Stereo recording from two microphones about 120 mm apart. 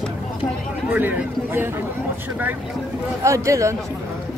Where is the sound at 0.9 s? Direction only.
15° right (ahead or behind).